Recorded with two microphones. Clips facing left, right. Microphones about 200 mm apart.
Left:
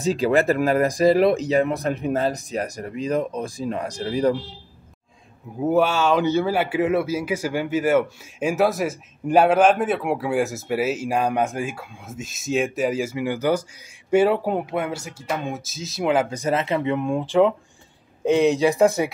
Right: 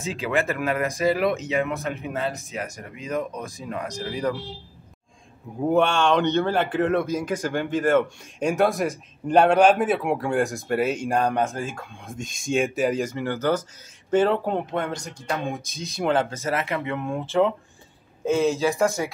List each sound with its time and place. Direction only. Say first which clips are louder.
0.0 s speech: left 6 dB; 35° left (ahead or behind)
5.6 s speech: left 1 dB; 5° left (ahead or behind)